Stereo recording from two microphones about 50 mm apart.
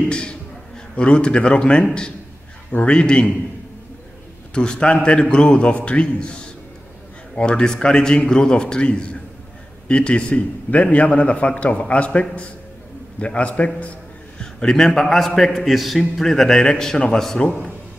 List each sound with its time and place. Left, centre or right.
0.1 s a sound: centre
0.9 s a man's voice: left
4.6 s a man's voice: left
14.4 s a man's voice: centre